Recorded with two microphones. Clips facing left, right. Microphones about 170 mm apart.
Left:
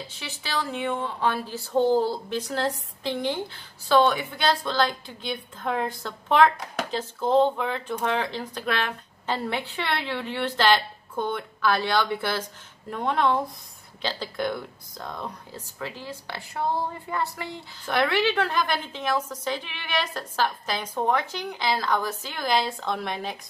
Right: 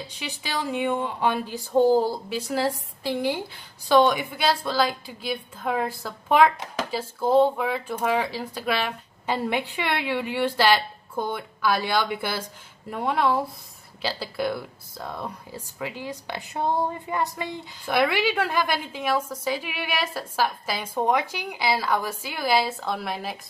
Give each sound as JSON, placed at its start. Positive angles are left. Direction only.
{"t": 0.0, "sound": "speech", "side_deg": -15}